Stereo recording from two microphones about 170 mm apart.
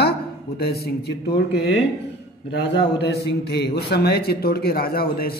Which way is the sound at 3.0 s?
75° left (ahead or behind).